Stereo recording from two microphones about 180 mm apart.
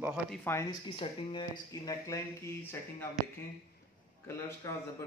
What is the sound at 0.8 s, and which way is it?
Speech, 30° left (ahead or behind).